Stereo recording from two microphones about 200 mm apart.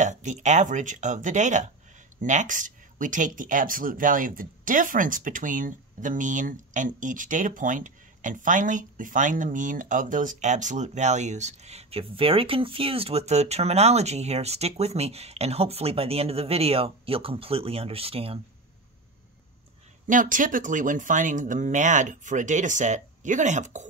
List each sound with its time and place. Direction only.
0.0 s speech: 35° right (ahead or behind)
20.1 s speech: 40° right (ahead or behind)